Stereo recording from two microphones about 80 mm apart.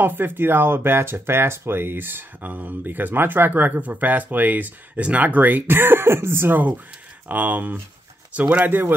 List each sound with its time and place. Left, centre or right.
0.0 s speech: right